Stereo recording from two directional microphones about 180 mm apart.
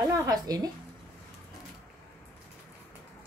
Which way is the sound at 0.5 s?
20° right (ahead or behind).